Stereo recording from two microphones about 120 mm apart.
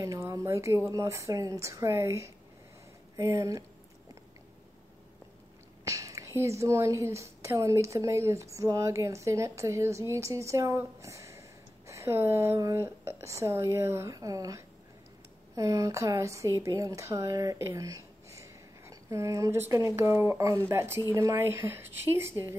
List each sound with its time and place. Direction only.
0.0 s a woman's voice: 25° right (ahead or behind)
5.9 s a woman's voice: 25° right (ahead or behind)